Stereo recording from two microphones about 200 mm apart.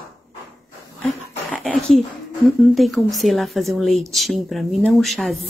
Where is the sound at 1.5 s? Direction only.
5° left (ahead or behind).